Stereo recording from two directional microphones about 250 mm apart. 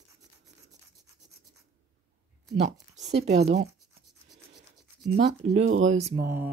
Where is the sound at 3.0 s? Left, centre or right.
Right.